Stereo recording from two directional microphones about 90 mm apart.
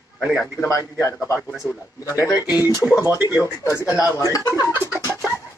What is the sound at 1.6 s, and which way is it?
Speech, 30° left (ahead or behind).